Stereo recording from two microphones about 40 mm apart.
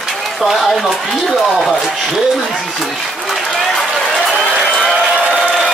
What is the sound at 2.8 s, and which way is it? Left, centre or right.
Applause, centre.